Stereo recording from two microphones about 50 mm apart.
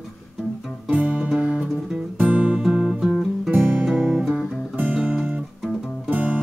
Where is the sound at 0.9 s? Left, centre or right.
Right.